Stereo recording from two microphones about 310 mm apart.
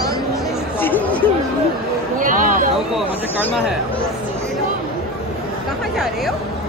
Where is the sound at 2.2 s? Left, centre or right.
Right.